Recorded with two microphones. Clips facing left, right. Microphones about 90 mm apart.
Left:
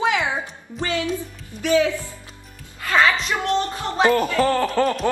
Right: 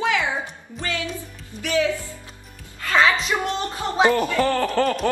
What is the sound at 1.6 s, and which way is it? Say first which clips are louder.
Speech: left 3 dB; 20° left (ahead or behind).